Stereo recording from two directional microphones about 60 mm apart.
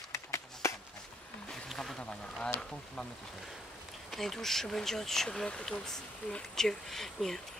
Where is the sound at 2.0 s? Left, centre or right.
Centre.